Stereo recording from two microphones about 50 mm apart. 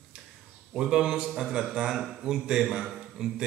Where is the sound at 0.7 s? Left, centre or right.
Centre.